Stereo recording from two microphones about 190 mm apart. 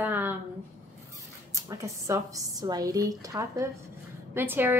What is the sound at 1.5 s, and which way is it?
A woman's voice, 15° right (ahead or behind).